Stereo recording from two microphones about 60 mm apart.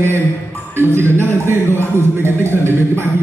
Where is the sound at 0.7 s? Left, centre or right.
Right.